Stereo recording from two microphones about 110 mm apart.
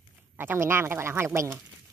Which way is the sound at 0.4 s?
20° right (ahead or behind).